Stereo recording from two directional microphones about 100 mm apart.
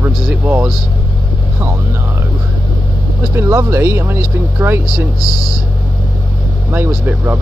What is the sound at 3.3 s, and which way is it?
Speech, 25° right (ahead or behind).